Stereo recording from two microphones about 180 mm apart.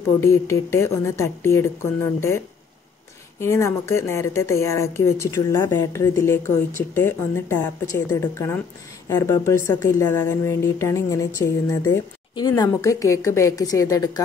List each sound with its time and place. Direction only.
0.2 s a woman's voice: 15° left (ahead or behind)